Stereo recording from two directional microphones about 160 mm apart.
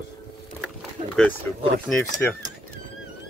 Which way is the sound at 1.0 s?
40° right (ahead or behind).